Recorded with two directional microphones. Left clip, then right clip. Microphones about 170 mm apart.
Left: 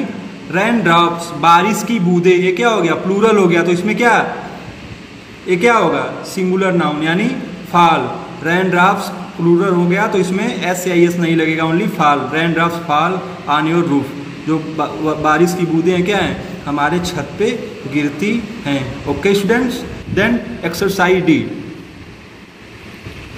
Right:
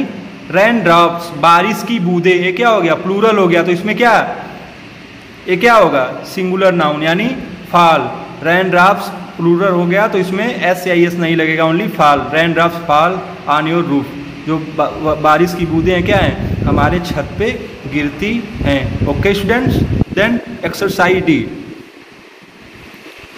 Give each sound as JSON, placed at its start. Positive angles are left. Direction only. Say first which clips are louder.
{"t": 0.5, "sound": "a man's voice", "louder": "right 4 dB", "side_deg": -15}
{"t": 5.5, "sound": "a man's voice", "louder": "right 3 dB", "side_deg": -20}